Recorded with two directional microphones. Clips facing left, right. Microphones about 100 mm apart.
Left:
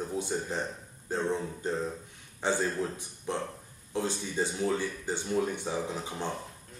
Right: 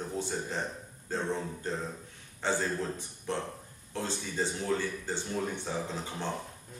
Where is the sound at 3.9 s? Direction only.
15° left (ahead or behind).